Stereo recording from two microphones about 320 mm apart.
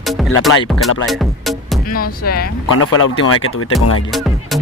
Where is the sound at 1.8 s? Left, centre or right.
Left.